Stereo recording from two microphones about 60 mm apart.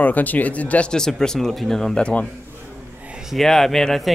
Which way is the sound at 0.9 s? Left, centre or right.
Centre.